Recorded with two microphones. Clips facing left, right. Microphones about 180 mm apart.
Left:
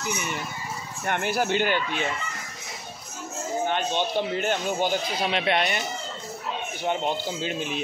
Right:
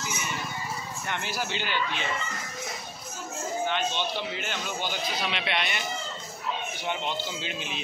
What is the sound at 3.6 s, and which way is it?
A man's voice, 50° left (ahead or behind).